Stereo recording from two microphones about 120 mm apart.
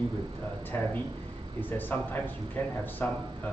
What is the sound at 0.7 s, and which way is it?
Speech, 15° left (ahead or behind).